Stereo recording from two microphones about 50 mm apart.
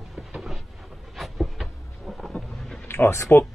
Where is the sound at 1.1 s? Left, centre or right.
Centre.